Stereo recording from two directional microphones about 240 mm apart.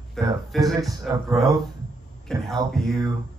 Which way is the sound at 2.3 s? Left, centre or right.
Centre.